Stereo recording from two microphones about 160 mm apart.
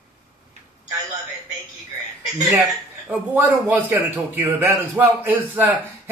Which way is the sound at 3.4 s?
10° right (ahead or behind).